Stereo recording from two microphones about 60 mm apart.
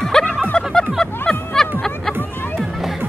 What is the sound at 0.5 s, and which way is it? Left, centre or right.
Snicker, centre.